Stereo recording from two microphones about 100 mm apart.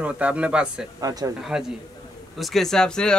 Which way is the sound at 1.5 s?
10° right (ahead or behind).